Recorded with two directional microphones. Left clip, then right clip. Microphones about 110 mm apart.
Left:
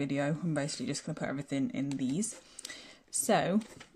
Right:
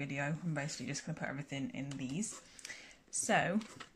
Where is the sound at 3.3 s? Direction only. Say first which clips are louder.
Left 4 dB; 40° left (ahead or behind).